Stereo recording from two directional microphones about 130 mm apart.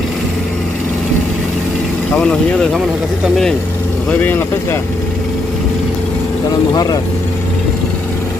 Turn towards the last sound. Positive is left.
turn(degrees=30)  # may be behind; listen again after turning